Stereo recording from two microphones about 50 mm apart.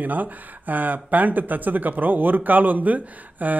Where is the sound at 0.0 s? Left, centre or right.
Right.